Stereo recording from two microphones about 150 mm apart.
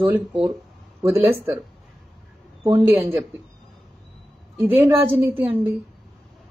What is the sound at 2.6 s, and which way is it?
Speech, 20° right (ahead or behind).